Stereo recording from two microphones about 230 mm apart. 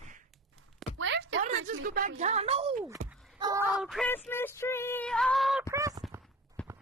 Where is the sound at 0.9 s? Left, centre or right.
Right.